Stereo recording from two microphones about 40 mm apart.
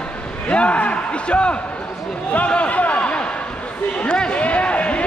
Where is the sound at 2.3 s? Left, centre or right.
Left.